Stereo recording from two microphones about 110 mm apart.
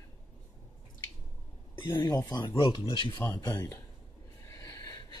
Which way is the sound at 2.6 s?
50° left (ahead or behind).